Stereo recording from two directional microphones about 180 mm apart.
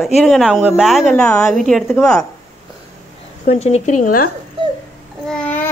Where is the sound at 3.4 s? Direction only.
35° left (ahead or behind).